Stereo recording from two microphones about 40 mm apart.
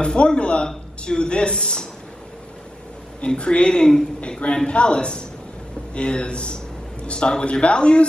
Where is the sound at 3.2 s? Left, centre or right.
Left.